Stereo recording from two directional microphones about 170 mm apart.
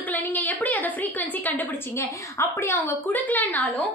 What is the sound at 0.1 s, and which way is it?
A woman's voice, 10° left (ahead or behind).